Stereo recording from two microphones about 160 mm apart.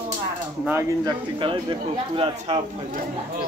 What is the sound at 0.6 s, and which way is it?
Speech, 15° right (ahead or behind).